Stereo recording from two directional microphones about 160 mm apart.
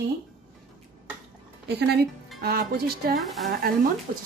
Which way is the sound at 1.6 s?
85° right.